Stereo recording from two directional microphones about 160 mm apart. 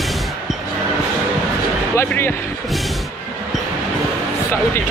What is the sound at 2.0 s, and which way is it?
Speech, 15° left (ahead or behind).